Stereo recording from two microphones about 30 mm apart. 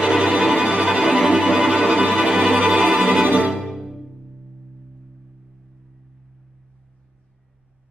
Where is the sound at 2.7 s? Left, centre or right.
Right.